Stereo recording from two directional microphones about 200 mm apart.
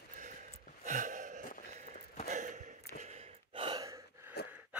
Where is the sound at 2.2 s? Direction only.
40° right (ahead or behind).